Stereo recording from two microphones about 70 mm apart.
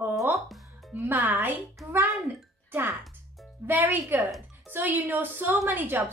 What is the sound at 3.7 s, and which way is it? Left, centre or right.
A woman's voice, right.